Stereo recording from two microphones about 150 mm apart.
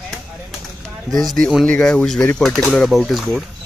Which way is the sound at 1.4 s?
5° left (ahead or behind).